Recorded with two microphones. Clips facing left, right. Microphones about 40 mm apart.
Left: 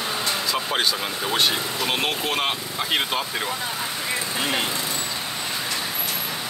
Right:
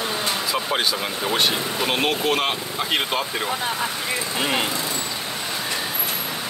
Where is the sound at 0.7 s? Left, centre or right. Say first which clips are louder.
Right 1 dB; centre.